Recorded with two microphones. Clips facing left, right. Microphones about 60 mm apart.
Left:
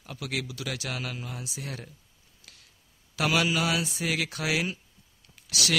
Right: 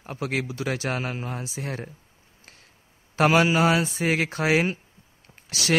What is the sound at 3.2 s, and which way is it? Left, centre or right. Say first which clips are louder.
A man's voice: right 7 dB; right.